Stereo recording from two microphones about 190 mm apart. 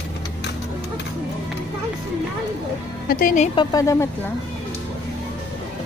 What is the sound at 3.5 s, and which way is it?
Speech, 15° left (ahead or behind).